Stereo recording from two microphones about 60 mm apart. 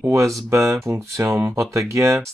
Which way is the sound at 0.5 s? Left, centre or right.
Right.